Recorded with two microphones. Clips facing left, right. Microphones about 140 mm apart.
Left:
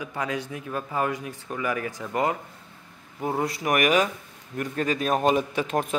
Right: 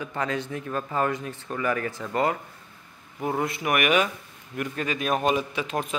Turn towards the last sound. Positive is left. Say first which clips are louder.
# left 3 dB
turn(degrees=45)  # may be behind; listen again after turning